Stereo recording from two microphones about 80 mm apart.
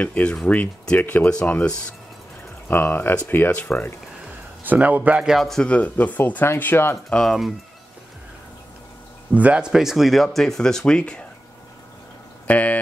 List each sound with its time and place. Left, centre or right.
0.0 s speech: centre
2.7 s speech: left
4.6 s speech: right
5.2 s speech: centre
5.6 s speech: centre
7.1 s speech: centre
9.3 s speech: centre
12.4 s speech: centre